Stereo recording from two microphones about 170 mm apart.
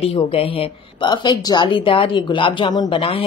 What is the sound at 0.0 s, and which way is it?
A woman's voice, 35° left (ahead or behind).